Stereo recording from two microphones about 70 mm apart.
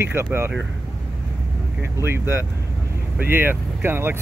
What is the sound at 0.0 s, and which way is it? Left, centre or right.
Speech, right.